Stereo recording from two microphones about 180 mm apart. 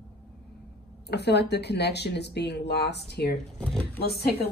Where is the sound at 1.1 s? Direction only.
70° left (ahead or behind).